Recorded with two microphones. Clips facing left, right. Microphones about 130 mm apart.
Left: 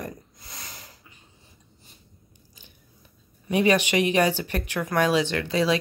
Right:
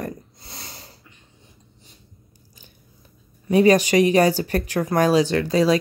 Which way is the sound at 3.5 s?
40° right (ahead or behind).